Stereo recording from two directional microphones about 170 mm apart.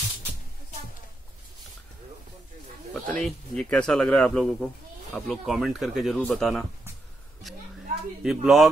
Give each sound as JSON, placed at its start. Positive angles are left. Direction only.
{"t": 2.9, "sound": "speech", "side_deg": 5}
{"t": 8.2, "sound": "speech", "side_deg": 0}